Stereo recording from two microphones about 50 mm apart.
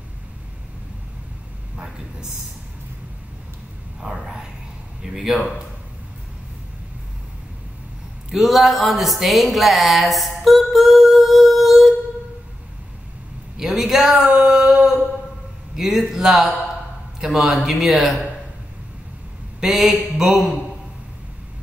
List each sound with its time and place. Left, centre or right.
1.8 s speech: centre
4.0 s speech: right
5.0 s a man's voice: centre
8.3 s speech: centre
13.6 s a man's voice: centre
14.1 s a sound: centre
15.7 s a man's voice: centre
19.6 s a man's voice: centre